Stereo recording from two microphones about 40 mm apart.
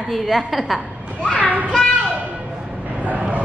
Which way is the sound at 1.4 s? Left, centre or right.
Right.